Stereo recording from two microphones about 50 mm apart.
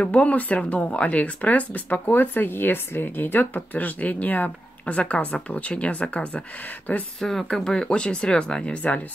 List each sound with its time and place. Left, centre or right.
0.0 s speech: left
2.0 s speech: left
7.2 s speech: centre; by 9.0 s left